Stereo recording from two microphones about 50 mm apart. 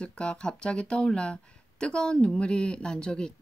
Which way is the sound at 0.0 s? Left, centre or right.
Centre.